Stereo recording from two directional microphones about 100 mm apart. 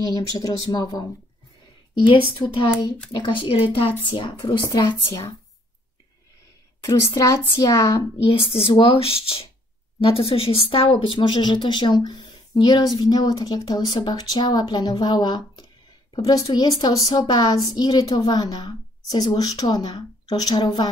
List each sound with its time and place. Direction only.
0.1 s speech: 40° left (ahead or behind)
2.0 s speech: 55° left (ahead or behind)
6.8 s a woman's voice: 30° left (ahead or behind)
8.3 s speech: 65° left (ahead or behind); by 15.6 s 45° left (ahead or behind)
16.2 s a woman's voice: 35° left (ahead or behind)